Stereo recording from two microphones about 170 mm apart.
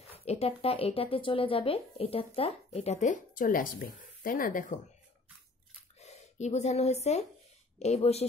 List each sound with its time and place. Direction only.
0.1 s speech: 35° left (ahead or behind); by 4.7 s 55° left (ahead or behind)
5.9 s speech: 40° left (ahead or behind)